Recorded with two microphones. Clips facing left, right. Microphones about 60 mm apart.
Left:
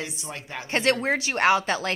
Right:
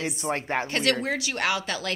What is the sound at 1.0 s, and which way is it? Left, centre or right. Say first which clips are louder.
Speech: left 5 dB; left.